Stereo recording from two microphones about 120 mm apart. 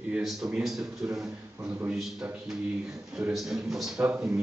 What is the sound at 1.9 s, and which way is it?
A man's voice, centre (ahead or behind).